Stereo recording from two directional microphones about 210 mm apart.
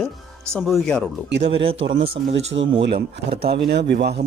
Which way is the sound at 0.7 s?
5° left (ahead or behind).